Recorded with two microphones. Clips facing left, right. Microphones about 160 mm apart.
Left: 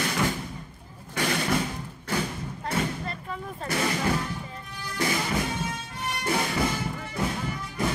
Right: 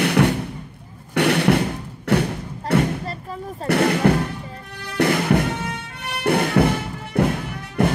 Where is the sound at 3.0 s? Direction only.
35° right (ahead or behind).